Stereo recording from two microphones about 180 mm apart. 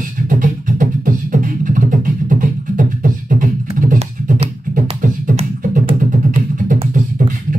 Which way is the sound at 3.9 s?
40° right (ahead or behind).